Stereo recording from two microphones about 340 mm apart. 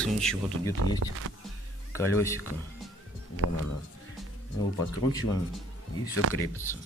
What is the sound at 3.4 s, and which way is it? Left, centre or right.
Speech, right.